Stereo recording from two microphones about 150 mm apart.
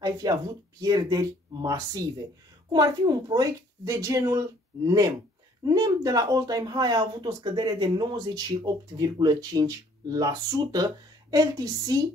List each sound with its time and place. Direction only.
0.0 s speech: 25° right (ahead or behind)